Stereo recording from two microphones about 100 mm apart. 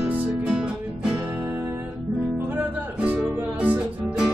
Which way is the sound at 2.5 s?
15° right (ahead or behind).